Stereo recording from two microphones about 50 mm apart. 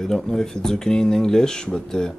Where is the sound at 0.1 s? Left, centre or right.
Centre.